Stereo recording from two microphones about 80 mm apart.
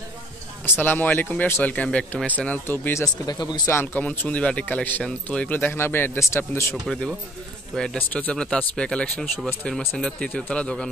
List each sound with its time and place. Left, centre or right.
0.7 s speech: left
3.3 s speech: left
3.6 s speech: left
6.7 s speech: centre
8.1 s speech: centre